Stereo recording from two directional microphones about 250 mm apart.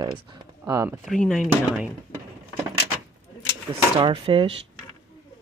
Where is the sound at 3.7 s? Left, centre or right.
Centre.